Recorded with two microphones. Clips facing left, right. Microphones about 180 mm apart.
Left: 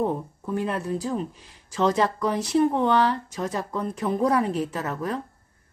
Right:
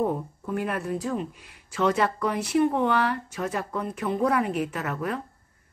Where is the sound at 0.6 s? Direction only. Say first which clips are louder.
Left 2 dB; 25° left (ahead or behind).